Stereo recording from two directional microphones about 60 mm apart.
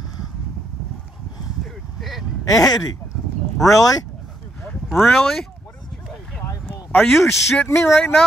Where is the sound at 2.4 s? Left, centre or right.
Left.